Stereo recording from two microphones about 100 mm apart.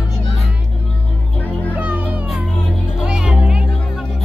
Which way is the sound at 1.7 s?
15° right (ahead or behind).